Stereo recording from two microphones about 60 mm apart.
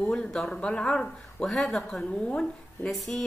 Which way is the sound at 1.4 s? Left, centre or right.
Centre.